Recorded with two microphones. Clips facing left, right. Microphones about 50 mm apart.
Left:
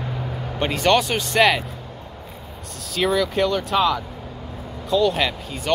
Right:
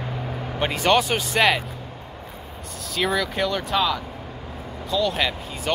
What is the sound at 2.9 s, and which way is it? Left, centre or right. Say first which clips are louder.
Speech: left 3 dB; centre.